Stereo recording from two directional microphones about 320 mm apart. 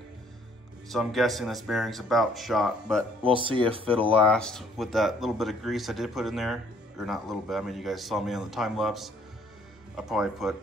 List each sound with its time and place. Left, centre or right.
0.8 s speech: centre
3.3 s speech: centre
4.1 s speech: centre